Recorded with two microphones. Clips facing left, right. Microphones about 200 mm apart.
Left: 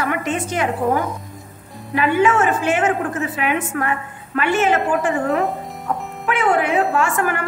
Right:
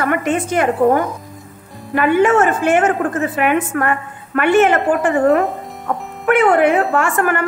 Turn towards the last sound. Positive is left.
turn(degrees=-55)  # may be behind; listen again after turning